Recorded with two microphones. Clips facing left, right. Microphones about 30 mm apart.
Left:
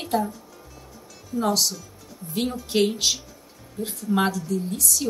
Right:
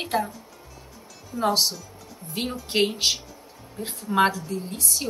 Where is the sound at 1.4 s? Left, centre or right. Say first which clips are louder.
Right 2 dB; right.